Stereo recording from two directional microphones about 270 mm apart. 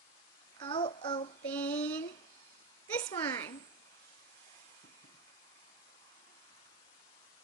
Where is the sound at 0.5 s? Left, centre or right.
Centre.